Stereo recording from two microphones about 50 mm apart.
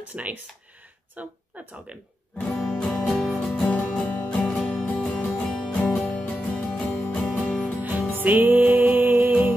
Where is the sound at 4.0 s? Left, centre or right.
Left.